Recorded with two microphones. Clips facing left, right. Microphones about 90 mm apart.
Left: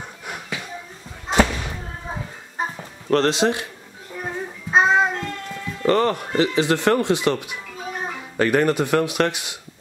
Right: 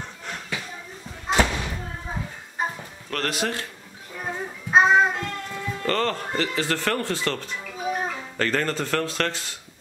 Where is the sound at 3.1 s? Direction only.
25° left (ahead or behind).